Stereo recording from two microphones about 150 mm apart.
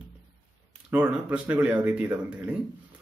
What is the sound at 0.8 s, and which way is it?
Speech, 10° right (ahead or behind).